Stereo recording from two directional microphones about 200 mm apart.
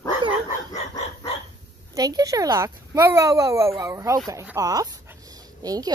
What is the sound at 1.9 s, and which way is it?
A woman's voice, 20° right (ahead or behind).